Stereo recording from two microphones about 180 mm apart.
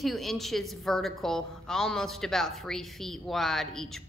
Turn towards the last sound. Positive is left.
turn(degrees=0)  # may be behind; listen again after turning